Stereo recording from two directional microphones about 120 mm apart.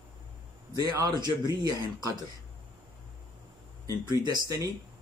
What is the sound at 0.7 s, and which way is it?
Speech, 25° right (ahead or behind).